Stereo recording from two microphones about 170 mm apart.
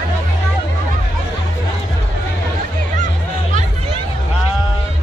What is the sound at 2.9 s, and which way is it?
Music, 45° right (ahead or behind).